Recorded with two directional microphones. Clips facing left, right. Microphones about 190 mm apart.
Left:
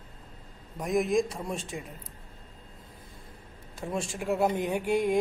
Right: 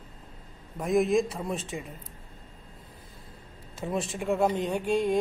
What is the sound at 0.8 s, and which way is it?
Speech, centre (ahead or behind).